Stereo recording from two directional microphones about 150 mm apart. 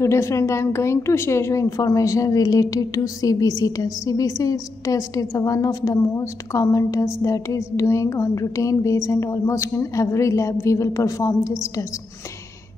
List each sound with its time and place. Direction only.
0.0 s a woman's voice: 20° left (ahead or behind)